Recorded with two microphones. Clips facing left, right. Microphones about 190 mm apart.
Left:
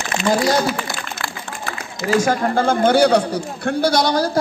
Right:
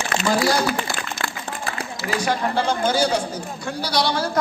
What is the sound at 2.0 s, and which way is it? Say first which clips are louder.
A man's voice: left 6 dB; 45° left (ahead or behind).